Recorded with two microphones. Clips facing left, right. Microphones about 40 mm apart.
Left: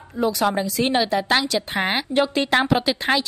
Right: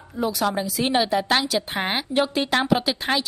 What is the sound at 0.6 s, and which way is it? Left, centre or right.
A woman's voice, centre.